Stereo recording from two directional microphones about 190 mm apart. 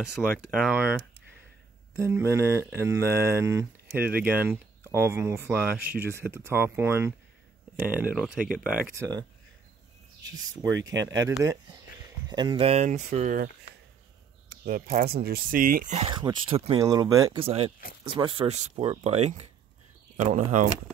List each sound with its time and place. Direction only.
0.5 s speech: centre (ahead or behind)
2.0 s speech: 15° right (ahead or behind)
4.0 s speech: 55° right (ahead or behind)
4.4 s speech: 10° right (ahead or behind)
10.7 s speech: 75° right (ahead or behind)
12.3 s speech: 25° right (ahead or behind); by 13.5 s 40° right (ahead or behind)
14.6 s speech: 50° right (ahead or behind)
16.1 s speech: 25° right (ahead or behind)
17.4 s speech: 30° right (ahead or behind)